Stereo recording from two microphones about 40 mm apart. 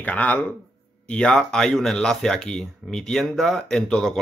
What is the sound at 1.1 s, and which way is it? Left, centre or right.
Speech, left.